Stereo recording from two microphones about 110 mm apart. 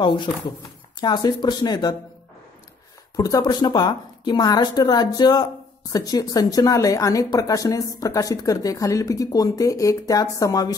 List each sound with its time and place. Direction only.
0.0 s a woman's voice: 45° left (ahead or behind)
3.2 s a woman's voice: 35° left (ahead or behind)